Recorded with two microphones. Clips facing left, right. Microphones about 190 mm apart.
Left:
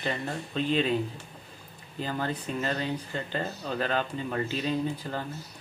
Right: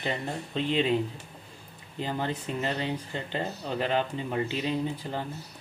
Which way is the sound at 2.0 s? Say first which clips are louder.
Even; 20° right (ahead or behind).